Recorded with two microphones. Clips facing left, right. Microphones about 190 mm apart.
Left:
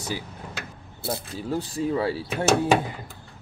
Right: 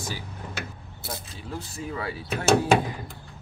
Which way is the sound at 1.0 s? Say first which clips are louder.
Left 8 dB; 30° left (ahead or behind).